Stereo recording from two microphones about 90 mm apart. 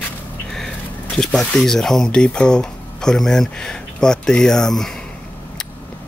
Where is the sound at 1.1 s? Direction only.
10° left (ahead or behind).